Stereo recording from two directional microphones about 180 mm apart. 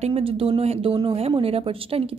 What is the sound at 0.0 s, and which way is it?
A woman's voice, 30° right (ahead or behind).